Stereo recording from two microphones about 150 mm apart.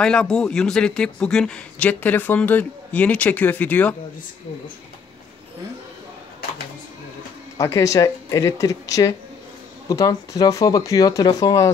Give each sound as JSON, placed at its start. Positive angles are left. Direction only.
{"t": 0.0, "sound": "a man's voice", "side_deg": 5}
{"t": 7.5, "sound": "speech", "side_deg": 20}